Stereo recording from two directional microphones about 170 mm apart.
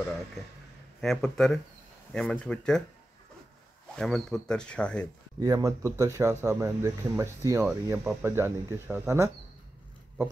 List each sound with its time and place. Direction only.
1.0 s speech: 5° left (ahead or behind)
3.9 s speech: 5° left (ahead or behind)
5.4 s speech: 20° right (ahead or behind)